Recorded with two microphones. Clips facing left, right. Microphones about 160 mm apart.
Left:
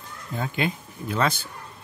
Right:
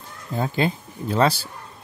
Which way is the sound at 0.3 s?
35° right (ahead or behind).